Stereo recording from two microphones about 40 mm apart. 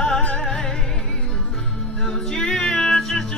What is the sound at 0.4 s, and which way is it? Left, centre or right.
Music, centre.